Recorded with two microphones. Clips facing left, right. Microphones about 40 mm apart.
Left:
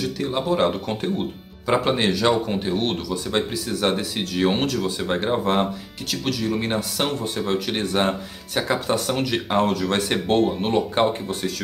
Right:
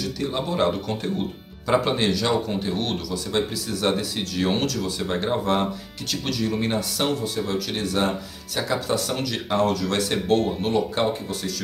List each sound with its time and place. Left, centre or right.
0.0 s speech: centre
1.7 s speech: centre
6.0 s speech: centre
6.7 s speech: centre